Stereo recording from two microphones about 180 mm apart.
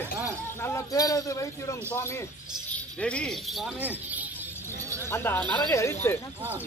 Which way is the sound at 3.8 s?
10° right (ahead or behind).